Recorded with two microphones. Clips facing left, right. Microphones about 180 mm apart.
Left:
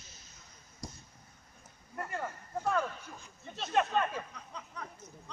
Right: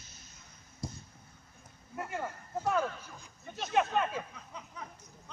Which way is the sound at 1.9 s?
5° right (ahead or behind).